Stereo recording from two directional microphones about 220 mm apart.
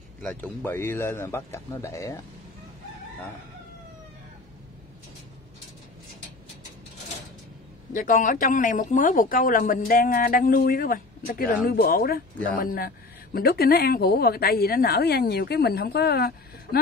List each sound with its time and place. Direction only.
0.2 s a man's voice: 5° left (ahead or behind)
7.9 s speech: 35° left (ahead or behind)